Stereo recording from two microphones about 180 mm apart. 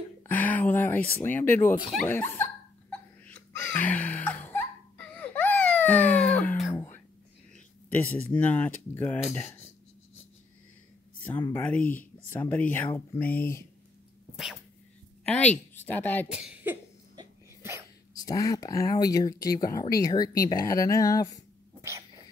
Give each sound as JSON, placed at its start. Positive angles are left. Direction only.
{"t": 0.3, "sound": "a sound", "side_deg": 10}
{"t": 1.2, "sound": "speech", "side_deg": 10}
{"t": 1.8, "sound": "speech", "side_deg": 0}
{"t": 2.0, "sound": "laughter", "side_deg": 10}
{"t": 7.5, "sound": "speech", "side_deg": 10}
{"t": 11.5, "sound": "speech", "side_deg": 10}
{"t": 14.3, "sound": "dog", "side_deg": 0}
{"t": 15.2, "sound": "a woman's voice", "side_deg": 5}
{"t": 16.3, "sound": "speech", "side_deg": -5}
{"t": 17.1, "sound": "a sound", "side_deg": -20}
{"t": 18.1, "sound": "speech", "side_deg": 20}